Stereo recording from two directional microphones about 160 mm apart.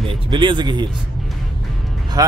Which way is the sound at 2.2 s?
25° right (ahead or behind).